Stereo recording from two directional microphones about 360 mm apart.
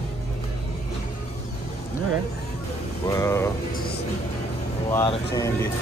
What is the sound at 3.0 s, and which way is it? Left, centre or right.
Speech, centre.